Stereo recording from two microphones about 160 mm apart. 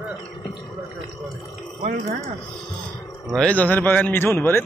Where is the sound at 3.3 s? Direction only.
5° left (ahead or behind).